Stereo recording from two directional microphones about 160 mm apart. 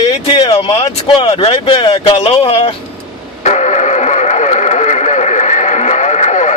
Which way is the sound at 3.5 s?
45° left (ahead or behind).